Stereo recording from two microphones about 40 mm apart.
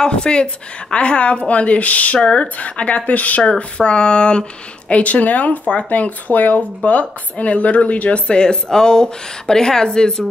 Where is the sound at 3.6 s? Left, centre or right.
Left.